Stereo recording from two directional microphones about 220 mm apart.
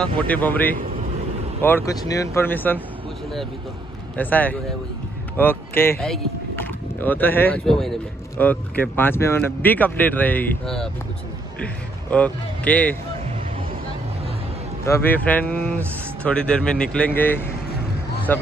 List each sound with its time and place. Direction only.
0.0 s speech: 5° left (ahead or behind)
4.2 s speech: 5° left (ahead or behind)
14.9 s speech: 10° left (ahead or behind)